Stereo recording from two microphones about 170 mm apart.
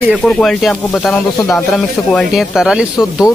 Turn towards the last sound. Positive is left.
turn(degrees=-5)  # may be behind; listen again after turning